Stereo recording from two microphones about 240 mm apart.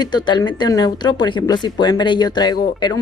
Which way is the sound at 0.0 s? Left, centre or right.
Centre.